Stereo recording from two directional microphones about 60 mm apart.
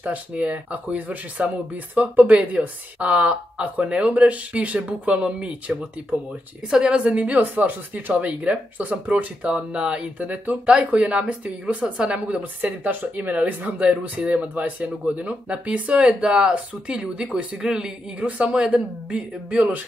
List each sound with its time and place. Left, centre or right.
0.0 s speech: right